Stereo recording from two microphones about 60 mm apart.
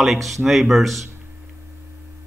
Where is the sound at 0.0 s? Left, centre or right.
Centre.